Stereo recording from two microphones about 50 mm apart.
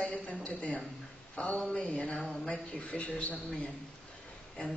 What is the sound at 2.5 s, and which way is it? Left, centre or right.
Speech, left.